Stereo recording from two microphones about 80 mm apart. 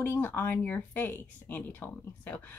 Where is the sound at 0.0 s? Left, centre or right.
Left.